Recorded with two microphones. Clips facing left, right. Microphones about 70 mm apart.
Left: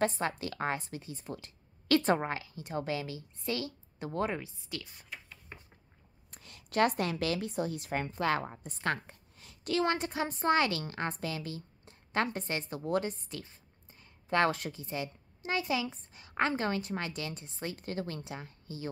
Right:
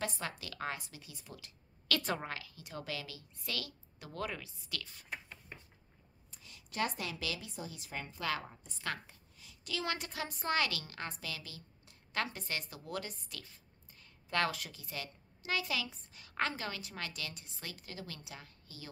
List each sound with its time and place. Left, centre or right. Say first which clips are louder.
0.0 s a woman's voice: left 9 dB; left
6.3 s a woman's voice: left 9 dB; left
17.7 s a woman's voice: left 10 dB; left